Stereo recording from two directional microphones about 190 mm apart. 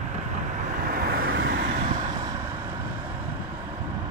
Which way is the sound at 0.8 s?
50° right (ahead or behind).